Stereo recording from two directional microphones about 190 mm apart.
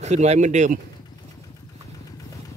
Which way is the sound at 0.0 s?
35° right (ahead or behind).